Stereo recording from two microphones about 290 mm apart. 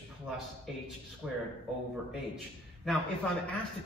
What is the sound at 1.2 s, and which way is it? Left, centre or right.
Speech, centre.